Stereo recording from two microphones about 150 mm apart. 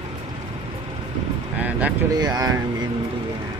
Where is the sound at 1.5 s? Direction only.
10° right (ahead or behind).